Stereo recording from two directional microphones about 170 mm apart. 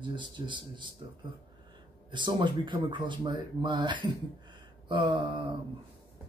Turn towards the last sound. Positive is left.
turn(degrees=-25)  # may be behind; listen again after turning